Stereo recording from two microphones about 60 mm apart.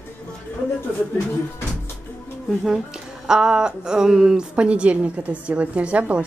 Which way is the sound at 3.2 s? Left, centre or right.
Centre.